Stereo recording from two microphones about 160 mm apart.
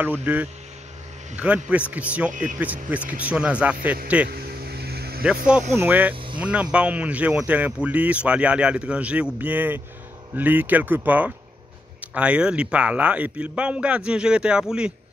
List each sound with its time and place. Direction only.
0.2 s speech: 10° right (ahead or behind)
4.3 s vehicle: 85° right
5.5 s speech: 5° right (ahead or behind)